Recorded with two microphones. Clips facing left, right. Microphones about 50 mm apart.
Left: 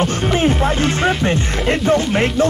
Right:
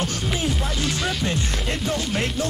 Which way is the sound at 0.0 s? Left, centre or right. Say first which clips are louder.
Left 9 dB; left.